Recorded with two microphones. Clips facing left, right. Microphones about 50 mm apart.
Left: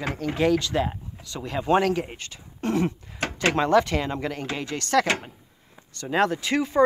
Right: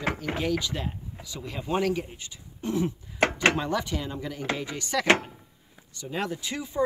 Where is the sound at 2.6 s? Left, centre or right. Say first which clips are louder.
Left 3 dB; left.